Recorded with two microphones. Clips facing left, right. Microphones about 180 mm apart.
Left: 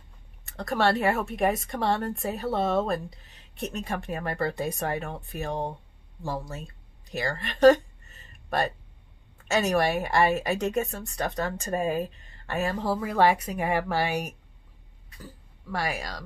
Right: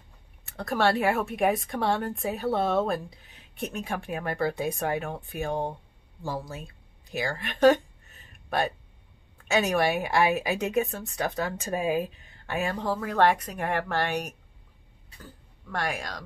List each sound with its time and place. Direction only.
0.5 s speech: centre (ahead or behind)
6.2 s a sound: centre (ahead or behind)
9.4 s speech: centre (ahead or behind)